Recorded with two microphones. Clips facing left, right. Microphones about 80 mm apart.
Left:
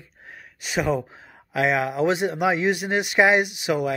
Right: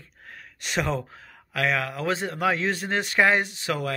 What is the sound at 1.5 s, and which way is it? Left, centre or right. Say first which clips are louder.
Speech: left 4 dB; centre.